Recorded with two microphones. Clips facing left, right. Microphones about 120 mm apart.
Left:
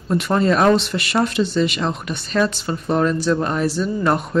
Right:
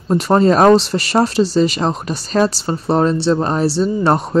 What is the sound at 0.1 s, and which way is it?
Speech, 35° right (ahead or behind).